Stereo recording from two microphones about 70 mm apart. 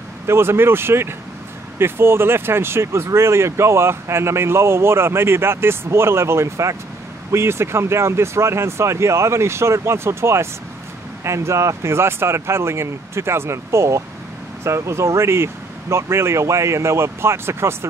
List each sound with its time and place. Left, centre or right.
0.3 s speech: right